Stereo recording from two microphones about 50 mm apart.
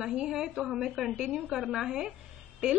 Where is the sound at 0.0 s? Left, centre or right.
Centre.